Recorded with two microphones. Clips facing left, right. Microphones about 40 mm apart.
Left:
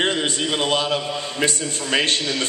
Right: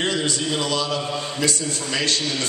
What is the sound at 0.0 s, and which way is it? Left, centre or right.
A man's voice, left.